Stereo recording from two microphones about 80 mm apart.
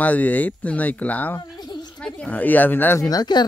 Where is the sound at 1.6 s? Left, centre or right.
Left.